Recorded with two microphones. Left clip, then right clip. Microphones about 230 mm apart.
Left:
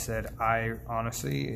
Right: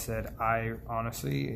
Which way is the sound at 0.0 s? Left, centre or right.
Centre.